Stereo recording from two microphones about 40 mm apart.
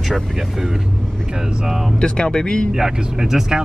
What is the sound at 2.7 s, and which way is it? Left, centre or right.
Speech, centre.